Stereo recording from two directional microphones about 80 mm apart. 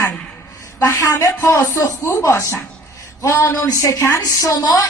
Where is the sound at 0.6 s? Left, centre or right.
Left.